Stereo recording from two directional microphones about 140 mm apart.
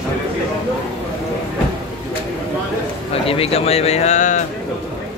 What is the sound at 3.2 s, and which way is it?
Speech, 45° left (ahead or behind).